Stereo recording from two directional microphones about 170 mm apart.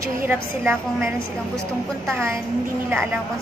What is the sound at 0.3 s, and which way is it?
Speech, 15° right (ahead or behind).